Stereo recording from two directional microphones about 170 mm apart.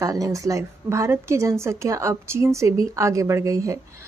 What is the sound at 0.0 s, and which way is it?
Speech, 20° right (ahead or behind).